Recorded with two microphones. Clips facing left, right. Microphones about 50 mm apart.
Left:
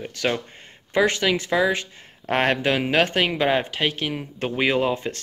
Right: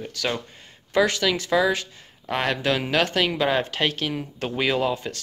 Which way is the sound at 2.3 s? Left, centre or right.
Left.